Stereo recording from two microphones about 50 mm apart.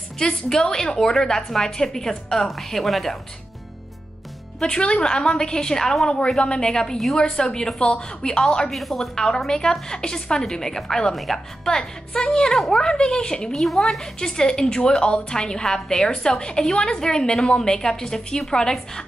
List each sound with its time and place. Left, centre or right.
0.2 s a woman's voice: centre
4.6 s a woman's voice: centre
8.6 s a woman's voice: centre
11.6 s a woman's voice: centre
13.6 s a woman's voice: centre